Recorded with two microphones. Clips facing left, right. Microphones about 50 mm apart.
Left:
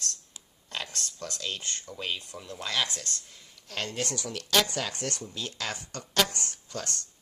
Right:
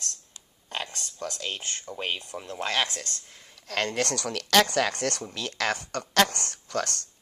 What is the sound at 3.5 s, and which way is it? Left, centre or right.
Speech, right.